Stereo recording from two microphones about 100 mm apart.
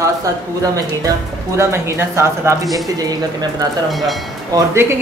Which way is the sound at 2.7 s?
40° right (ahead or behind).